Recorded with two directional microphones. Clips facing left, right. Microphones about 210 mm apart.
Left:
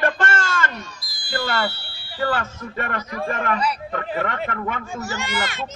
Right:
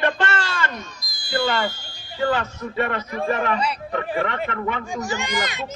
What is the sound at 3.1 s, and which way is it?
Speech, 25° right (ahead or behind).